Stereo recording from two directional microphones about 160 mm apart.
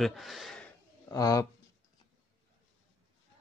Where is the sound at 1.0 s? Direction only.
20° left (ahead or behind).